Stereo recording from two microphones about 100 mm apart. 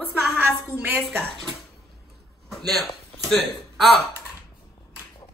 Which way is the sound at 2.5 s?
Centre (ahead or behind).